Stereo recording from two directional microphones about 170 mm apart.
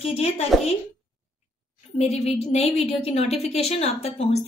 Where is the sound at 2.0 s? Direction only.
40° left (ahead or behind).